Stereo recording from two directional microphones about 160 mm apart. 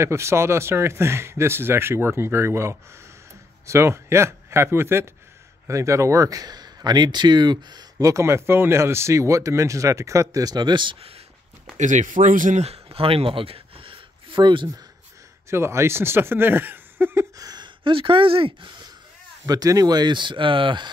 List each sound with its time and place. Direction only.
0.0 s a man's voice: 15° right (ahead or behind); by 11.1 s 35° right (ahead or behind)
11.7 s speech: 50° right (ahead or behind); by 14.7 s 30° right (ahead or behind)
15.5 s speech: 15° right (ahead or behind); by 18.7 s 35° right (ahead or behind)
19.4 s speech: 25° right (ahead or behind)